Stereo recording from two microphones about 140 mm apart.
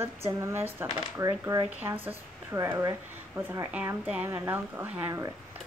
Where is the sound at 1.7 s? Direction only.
10° right (ahead or behind).